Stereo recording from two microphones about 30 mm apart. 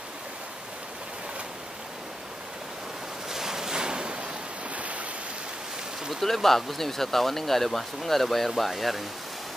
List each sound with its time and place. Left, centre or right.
3.3 s ocean: centre; by 4.3 s right
4.7 s a sound: right
6.2 s speech: centre